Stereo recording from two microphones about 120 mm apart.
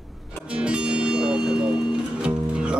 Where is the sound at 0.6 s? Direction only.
10° right (ahead or behind).